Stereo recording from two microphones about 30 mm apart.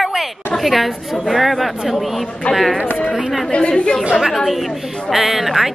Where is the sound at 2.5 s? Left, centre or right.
Left.